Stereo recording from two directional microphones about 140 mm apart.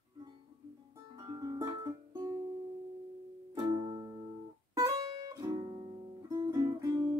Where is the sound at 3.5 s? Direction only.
30° right (ahead or behind).